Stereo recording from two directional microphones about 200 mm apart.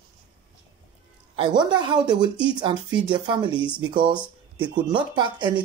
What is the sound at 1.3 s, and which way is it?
Speech, 25° right (ahead or behind).